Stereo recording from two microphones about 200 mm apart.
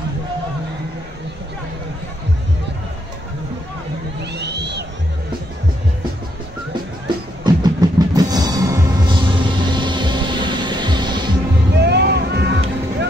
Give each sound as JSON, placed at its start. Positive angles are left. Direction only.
{"t": 4.2, "sound": "crowd", "side_deg": -60}
{"t": 7.4, "sound": "music", "side_deg": -20}
{"t": 11.8, "sound": "a sound", "side_deg": -55}